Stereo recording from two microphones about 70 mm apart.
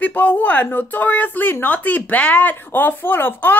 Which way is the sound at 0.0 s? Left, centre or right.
Left.